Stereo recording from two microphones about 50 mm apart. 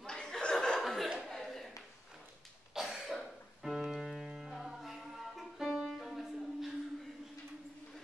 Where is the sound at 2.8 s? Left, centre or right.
Centre.